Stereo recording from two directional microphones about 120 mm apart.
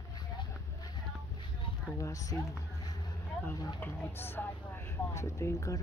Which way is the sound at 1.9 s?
25° left (ahead or behind).